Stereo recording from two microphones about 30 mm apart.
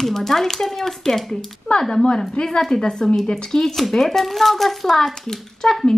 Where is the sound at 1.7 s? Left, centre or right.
Left.